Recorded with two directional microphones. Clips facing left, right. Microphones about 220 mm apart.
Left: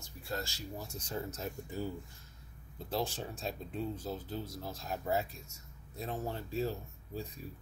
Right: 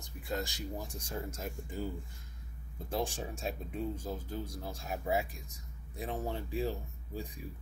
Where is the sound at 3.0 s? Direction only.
10° right (ahead or behind).